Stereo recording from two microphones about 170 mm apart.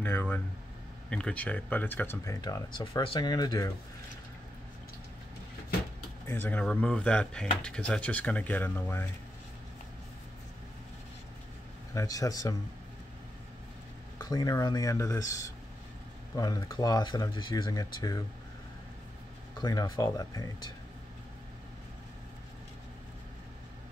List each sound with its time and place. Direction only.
0.0 s speech: 10° left (ahead or behind)
6.2 s speech: 10° left (ahead or behind)
11.9 s speech: 20° left (ahead or behind)
14.1 s speech: 25° left (ahead or behind)
19.6 s speech: 20° left (ahead or behind)